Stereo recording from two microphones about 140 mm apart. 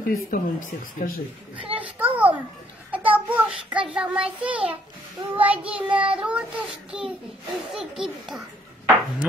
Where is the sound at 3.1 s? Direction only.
10° right (ahead or behind).